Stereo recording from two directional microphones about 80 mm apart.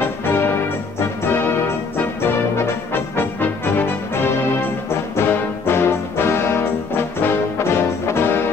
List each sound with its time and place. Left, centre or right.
0.0 s music: left
5.1 s brass instrument: left